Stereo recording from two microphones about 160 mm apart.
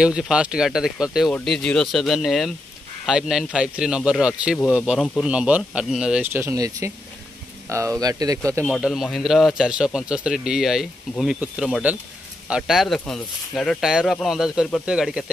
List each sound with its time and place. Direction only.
0.0 s a man's voice: 5° right (ahead or behind)
6.4 s speech: 20° right (ahead or behind)
8.6 s a man's voice: 5° right (ahead or behind)